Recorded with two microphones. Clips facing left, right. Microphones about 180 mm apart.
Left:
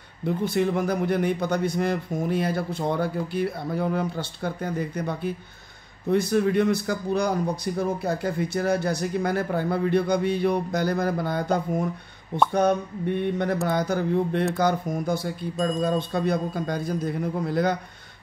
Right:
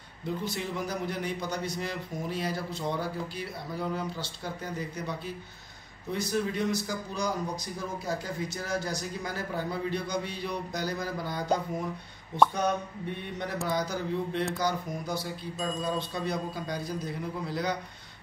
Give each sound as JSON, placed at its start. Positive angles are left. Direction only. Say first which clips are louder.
{"t": 0.5, "sound": "a man's voice", "louder": "left 10 dB", "side_deg": 55}